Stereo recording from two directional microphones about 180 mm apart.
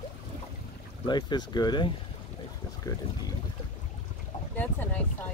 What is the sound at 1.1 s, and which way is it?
Speech, 25° left (ahead or behind).